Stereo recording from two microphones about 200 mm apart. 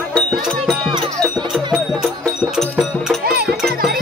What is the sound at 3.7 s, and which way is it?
Music, 50° right (ahead or behind).